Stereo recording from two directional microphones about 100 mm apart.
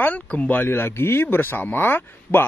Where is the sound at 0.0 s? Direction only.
15° left (ahead or behind).